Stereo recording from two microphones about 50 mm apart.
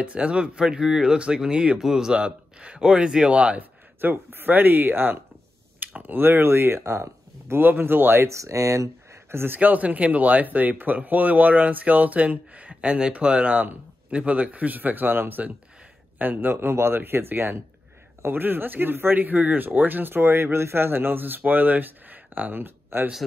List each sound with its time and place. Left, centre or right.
0.0 s speech: right
1.8 s speech: centre
2.1 s speech: right
4.0 s speech: right
6.8 s speech: right
7.6 s speech: right
8.3 s speech: right
9.5 s speech: right
16.5 s speech: right